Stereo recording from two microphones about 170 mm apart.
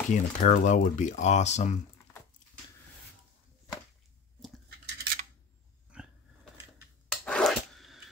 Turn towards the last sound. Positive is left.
turn(degrees=0)  # may be behind; listen again after turning